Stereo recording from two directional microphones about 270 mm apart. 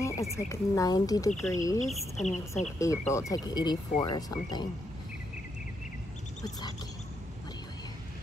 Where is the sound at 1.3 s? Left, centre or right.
Centre.